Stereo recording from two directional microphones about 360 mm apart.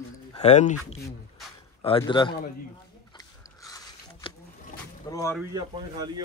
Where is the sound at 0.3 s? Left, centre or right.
Centre.